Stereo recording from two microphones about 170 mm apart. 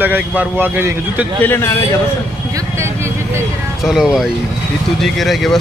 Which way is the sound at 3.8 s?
5° right (ahead or behind).